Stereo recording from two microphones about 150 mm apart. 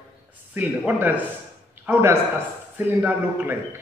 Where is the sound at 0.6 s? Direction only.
10° right (ahead or behind).